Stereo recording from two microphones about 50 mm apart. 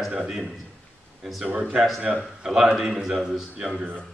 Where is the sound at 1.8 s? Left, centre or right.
Centre.